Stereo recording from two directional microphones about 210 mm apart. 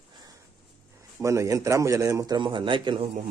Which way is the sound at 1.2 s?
15° right (ahead or behind).